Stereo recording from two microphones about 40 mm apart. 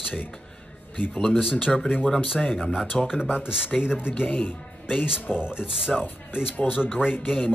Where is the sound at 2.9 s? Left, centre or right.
Centre.